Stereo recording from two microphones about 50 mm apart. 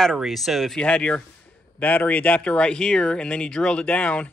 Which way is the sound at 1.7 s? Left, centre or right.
Left.